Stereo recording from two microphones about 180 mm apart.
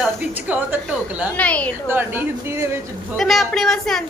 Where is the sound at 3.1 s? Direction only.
Centre (ahead or behind).